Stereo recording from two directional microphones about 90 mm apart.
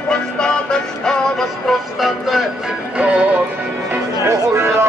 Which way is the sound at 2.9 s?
15° right (ahead or behind).